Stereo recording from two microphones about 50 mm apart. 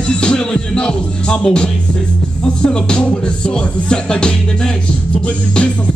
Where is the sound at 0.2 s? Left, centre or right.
Centre.